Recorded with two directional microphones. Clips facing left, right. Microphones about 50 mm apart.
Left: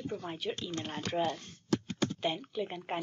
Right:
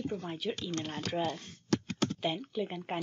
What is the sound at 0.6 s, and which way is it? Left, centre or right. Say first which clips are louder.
Speech: right 1 dB; centre.